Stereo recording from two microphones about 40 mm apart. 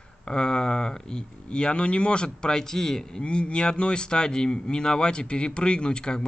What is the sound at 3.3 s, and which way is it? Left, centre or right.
Speech, left.